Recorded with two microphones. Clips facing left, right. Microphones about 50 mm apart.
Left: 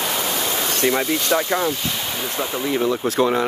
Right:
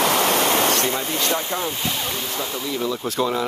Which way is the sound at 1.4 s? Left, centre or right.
Left.